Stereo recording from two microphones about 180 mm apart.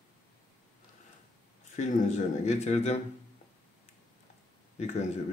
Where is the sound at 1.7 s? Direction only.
40° left (ahead or behind).